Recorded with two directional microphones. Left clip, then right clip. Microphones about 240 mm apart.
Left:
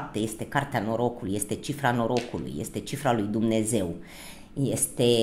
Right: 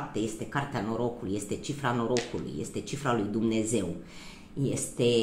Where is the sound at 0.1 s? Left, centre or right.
Left.